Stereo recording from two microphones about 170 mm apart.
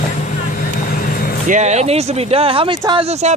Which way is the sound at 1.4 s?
45° right (ahead or behind).